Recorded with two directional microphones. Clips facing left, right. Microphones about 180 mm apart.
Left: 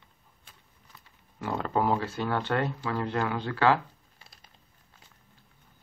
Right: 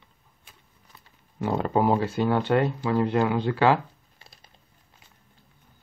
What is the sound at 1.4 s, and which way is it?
Speech, 20° right (ahead or behind).